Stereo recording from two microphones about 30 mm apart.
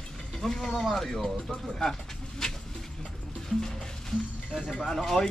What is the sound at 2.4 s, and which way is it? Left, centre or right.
Speech, left.